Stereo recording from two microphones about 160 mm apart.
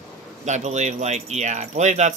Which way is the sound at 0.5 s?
45° right (ahead or behind).